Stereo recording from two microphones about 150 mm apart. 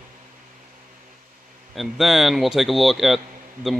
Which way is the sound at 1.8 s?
Centre (ahead or behind).